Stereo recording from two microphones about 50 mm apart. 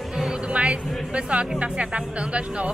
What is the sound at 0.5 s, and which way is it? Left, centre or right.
Music, right.